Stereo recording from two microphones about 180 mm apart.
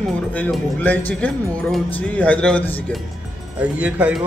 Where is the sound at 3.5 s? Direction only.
10° right (ahead or behind).